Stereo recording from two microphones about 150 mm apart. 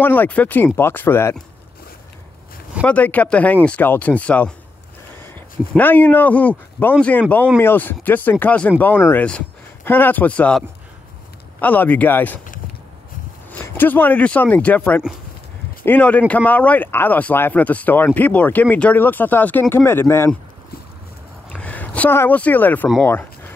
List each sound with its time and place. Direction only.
0.0 s speech: 15° left (ahead or behind)
2.8 s speech: 10° left (ahead or behind)
5.8 s speech: 10° left (ahead or behind)
11.6 s speech: 10° left (ahead or behind)
13.5 s speech: 15° left (ahead or behind)
21.5 s speech: 10° left (ahead or behind)